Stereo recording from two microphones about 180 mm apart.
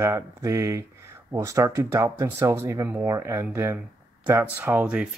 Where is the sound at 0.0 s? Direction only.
15° right (ahead or behind).